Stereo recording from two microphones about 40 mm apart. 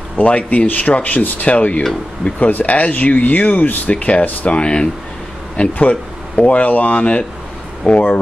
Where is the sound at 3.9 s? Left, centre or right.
Left.